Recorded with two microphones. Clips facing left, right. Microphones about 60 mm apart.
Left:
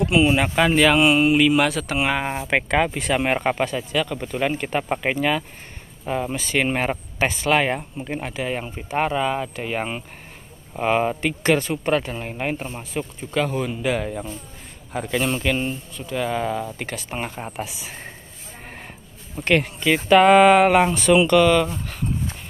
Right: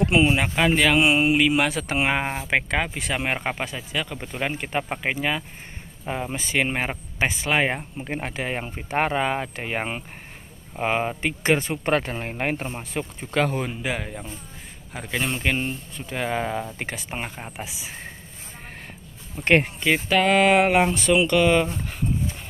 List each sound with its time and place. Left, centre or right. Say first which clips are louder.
0.0 s speech: left 1 dB; right
0.4 s speech: left 3 dB; centre
1.0 s speech: left 3 dB; centre
2.5 s speech: left 4 dB; centre
4.6 s speech: left 3 dB; centre
8.0 s speech: left 2 dB; right
10.8 s speech: left 4 dB; centre
11.8 s speech: left 1 dB; right
13.8 s speech: left 5 dB; centre
15.5 s speech: left 2 dB; right
17.1 s speech: left 3 dB; centre
19.4 s speech: even; right
20.2 s a sound: left 7 dB; centre
20.4 s speech: left 4 dB; centre